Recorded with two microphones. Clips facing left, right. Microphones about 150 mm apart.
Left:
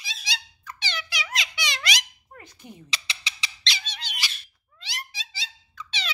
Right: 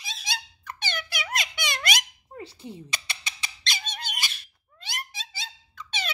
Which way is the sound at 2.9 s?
50° right (ahead or behind).